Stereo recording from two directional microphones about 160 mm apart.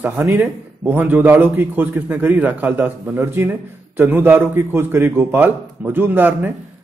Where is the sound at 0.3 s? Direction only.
10° right (ahead or behind).